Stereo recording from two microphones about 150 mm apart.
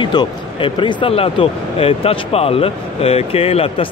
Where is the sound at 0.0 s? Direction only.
30° left (ahead or behind).